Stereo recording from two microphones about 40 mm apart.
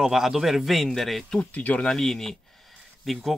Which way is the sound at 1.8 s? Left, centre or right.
Centre.